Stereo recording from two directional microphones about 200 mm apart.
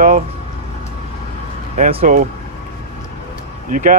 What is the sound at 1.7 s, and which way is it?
Speech, 40° right (ahead or behind).